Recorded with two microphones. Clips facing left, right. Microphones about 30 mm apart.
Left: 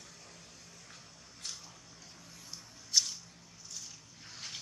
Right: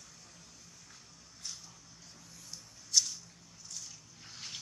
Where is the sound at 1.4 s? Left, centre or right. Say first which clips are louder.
Left 1 dB; left.